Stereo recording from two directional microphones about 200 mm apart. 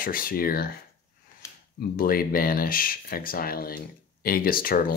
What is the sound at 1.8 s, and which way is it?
Speech, 45° left (ahead or behind).